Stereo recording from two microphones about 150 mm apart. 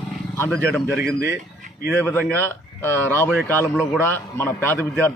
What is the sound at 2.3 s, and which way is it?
Speech, 15° left (ahead or behind).